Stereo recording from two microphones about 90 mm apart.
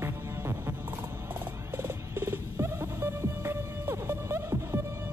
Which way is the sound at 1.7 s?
30° right (ahead or behind).